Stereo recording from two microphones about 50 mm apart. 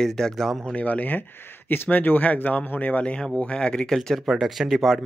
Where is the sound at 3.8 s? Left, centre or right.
Centre.